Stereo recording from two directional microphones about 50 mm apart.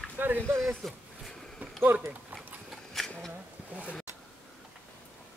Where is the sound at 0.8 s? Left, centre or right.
Centre.